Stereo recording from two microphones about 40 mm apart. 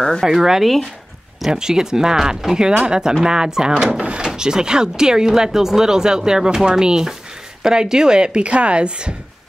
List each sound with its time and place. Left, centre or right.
0.2 s a woman's voice: centre; by 9.1 s right